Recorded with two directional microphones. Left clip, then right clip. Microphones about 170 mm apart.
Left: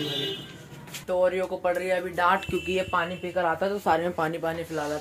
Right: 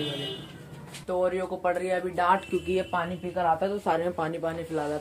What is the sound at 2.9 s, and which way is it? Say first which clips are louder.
Speech: left 3 dB; 25° left (ahead or behind).